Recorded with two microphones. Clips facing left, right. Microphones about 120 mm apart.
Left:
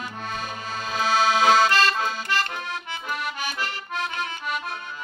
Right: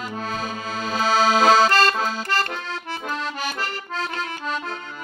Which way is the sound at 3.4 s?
40° right (ahead or behind).